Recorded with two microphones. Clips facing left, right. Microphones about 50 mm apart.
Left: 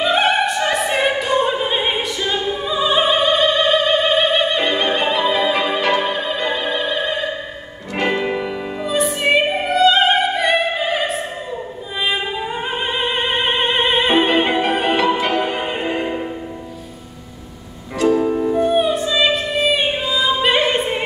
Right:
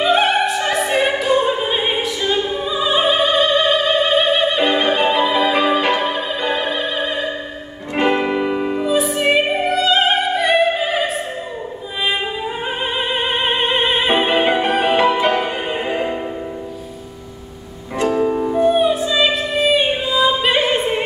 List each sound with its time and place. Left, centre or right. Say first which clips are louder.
0.0 s opera: right 1 dB; centre
5.8 s music: even; centre
6.0 s music: even; centre
7.9 s music: right 3 dB; right
8.8 s opera: even; centre
12.6 s opera: even; centre
15.2 s music: right 1 dB; centre
18.1 s music: right 2 dB; centre